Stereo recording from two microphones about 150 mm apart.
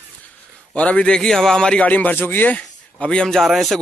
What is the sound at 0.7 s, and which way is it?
A man's voice, 10° left (ahead or behind).